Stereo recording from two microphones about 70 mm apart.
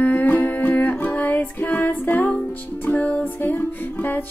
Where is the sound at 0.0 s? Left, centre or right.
Left.